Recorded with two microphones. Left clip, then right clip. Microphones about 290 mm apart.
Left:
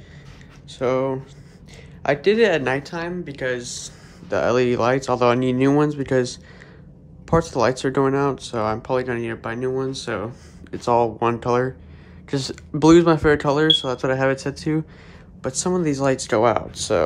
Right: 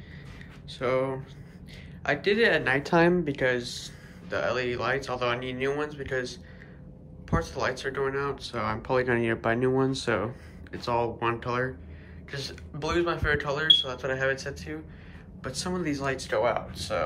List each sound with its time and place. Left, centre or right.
0.7 s speech: centre
2.8 s speech: centre
3.3 s speech: centre